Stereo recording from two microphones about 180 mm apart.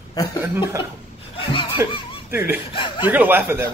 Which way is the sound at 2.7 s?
30° left (ahead or behind).